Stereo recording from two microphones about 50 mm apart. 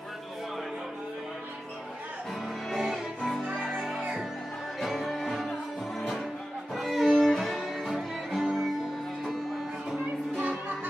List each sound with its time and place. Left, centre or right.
2.7 s music: centre
10.3 s music: right